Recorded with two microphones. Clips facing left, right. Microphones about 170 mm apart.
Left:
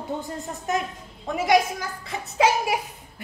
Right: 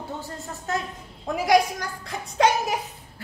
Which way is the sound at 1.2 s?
Centre (ahead or behind).